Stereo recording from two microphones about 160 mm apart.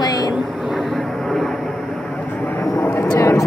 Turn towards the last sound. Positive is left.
turn(degrees=20)  # may be behind; listen again after turning